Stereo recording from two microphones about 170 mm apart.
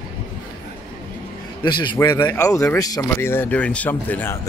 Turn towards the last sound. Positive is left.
turn(degrees=10)  # may be behind; listen again after turning